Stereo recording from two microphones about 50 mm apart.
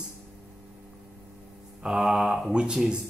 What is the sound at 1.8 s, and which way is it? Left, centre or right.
Mantra, centre.